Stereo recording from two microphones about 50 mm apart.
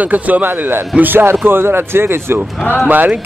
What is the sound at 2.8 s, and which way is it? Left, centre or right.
Speech, right.